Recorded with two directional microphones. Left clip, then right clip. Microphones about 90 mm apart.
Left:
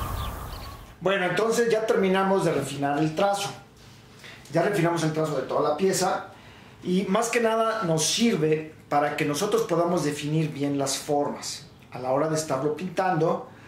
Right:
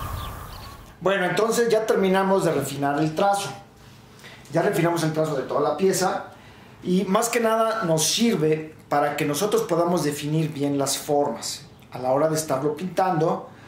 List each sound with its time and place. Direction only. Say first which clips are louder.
0.0 s a sound: even; centre (ahead or behind)
1.0 s speech: right 2 dB; 20° right (ahead or behind)
4.5 s speech: right 2 dB; 25° right (ahead or behind)